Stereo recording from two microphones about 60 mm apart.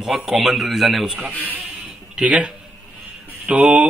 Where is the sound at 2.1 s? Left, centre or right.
Centre.